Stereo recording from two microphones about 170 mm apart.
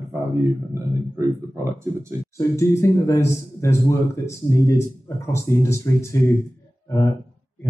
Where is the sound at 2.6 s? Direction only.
15° left (ahead or behind).